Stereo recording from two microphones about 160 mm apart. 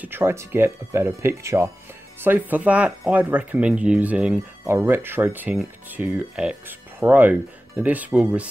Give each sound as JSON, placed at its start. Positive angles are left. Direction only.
{"t": 0.0, "sound": "speech", "side_deg": -15}